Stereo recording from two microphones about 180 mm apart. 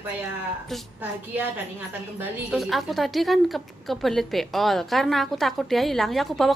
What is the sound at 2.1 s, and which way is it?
A woman's voice, centre (ahead or behind).